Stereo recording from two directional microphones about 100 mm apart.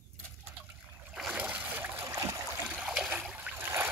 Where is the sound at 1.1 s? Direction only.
10° right (ahead or behind).